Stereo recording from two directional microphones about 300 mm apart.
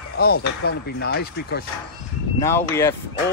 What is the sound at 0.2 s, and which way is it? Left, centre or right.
Speech, left.